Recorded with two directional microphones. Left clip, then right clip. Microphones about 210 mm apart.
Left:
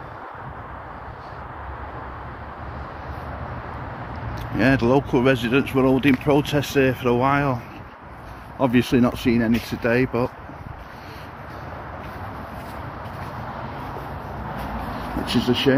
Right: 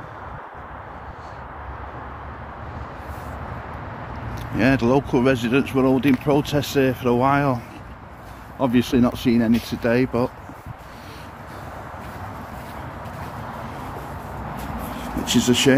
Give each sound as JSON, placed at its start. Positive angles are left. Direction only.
{"t": 4.6, "sound": "speech", "side_deg": -5}
{"t": 8.5, "sound": "speech", "side_deg": 0}
{"t": 15.2, "sound": "speech", "side_deg": -15}